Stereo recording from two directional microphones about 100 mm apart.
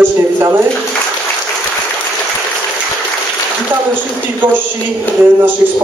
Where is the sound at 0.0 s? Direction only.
20° right (ahead or behind).